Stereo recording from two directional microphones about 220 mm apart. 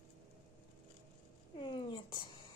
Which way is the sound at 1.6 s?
20° left (ahead or behind).